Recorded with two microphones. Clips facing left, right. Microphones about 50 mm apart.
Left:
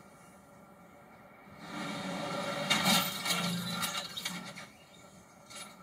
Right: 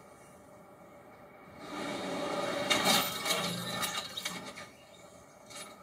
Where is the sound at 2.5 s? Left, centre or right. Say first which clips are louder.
Even; centre.